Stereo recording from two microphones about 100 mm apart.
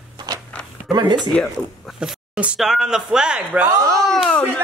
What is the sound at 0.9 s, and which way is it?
Speech, 45° right (ahead or behind).